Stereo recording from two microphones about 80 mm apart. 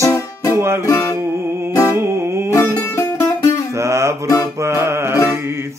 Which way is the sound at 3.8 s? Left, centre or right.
Right.